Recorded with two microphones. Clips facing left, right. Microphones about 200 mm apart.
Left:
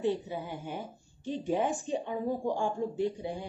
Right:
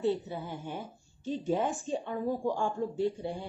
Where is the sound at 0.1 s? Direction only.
15° left (ahead or behind).